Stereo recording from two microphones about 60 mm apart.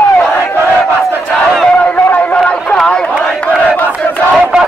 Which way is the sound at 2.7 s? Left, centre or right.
Centre.